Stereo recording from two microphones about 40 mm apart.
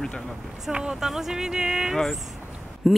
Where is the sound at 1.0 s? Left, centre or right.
Centre.